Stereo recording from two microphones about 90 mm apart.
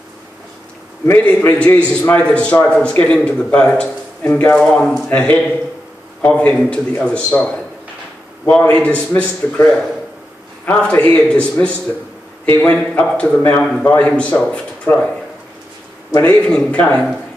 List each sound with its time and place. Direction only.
1.2 s speech: 15° left (ahead or behind)
4.6 s speech: 10° left (ahead or behind)
5.1 s speech: 15° left (ahead or behind)
8.5 s speech: 15° left (ahead or behind)
10.6 s speech: 20° left (ahead or behind)
14.9 s speech: 30° left (ahead or behind)
16.2 s speech: 15° left (ahead or behind)